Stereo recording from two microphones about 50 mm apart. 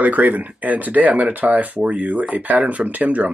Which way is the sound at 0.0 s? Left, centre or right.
Right.